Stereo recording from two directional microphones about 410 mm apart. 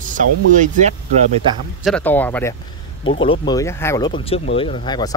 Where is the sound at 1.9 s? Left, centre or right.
Centre.